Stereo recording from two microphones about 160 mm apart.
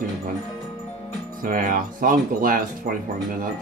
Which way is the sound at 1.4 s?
60° right (ahead or behind).